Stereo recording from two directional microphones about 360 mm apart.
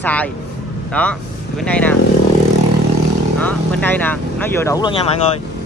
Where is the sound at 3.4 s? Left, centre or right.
Centre.